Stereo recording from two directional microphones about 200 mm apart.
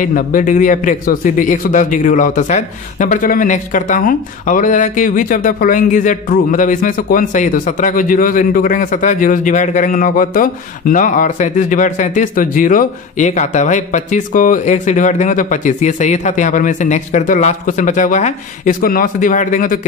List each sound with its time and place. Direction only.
0.0 s a man's voice: 40° left (ahead or behind)